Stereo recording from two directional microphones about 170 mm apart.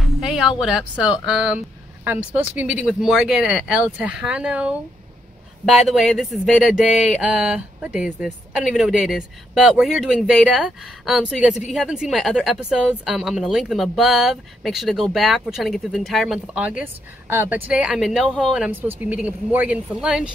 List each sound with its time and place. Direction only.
0.2 s a woman's voice: centre (ahead or behind)